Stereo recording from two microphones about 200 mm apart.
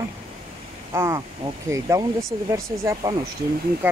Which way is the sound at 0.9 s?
15° right (ahead or behind).